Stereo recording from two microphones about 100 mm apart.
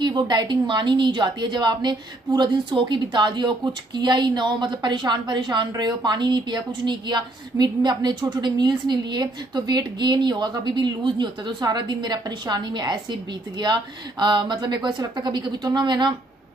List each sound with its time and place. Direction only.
0.0 s a woman's voice: 45° right (ahead or behind)